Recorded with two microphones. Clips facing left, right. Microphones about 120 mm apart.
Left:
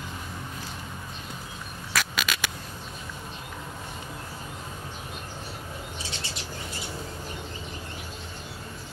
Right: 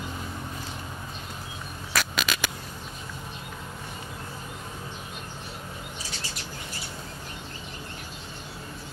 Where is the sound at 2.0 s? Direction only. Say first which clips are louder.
Right 1 dB; 30° right (ahead or behind).